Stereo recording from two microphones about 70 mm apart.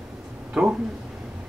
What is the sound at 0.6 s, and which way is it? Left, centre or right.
Speech, centre.